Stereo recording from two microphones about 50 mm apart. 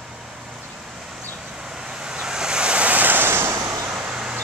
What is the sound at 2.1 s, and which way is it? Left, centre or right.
Waves, centre.